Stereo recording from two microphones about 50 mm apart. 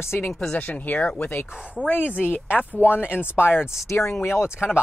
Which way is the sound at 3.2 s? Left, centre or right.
Left.